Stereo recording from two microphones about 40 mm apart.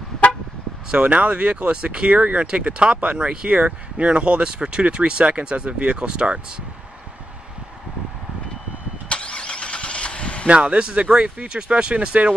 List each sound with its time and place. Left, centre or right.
0.9 s speech: right
9.1 s vehicle: left
10.4 s speech: right